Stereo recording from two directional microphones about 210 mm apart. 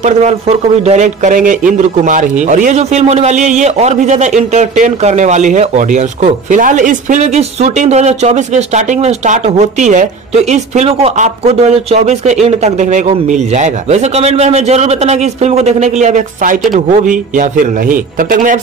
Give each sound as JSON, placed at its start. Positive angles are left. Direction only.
{"t": 0.0, "sound": "speech", "side_deg": -35}